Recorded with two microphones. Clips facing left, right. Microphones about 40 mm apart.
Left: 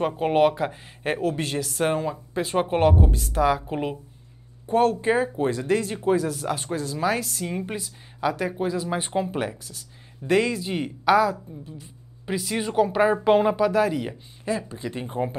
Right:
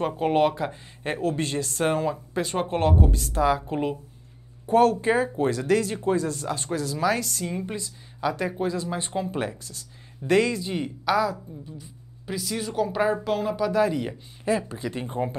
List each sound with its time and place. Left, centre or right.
0.2 s a woman's voice: centre
1.4 s speech: left
1.7 s a woman's voice: centre
3.6 s a woman's voice: centre
8.3 s a woman's voice: centre
10.3 s a woman's voice: centre
13.2 s speech: left
13.6 s speech: centre
14.5 s speech: centre
14.8 s speech: centre